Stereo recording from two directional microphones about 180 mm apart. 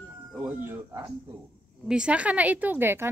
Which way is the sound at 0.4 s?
10° right (ahead or behind).